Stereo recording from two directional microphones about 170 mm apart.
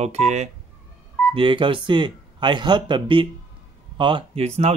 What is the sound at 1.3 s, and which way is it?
Speech, 30° right (ahead or behind).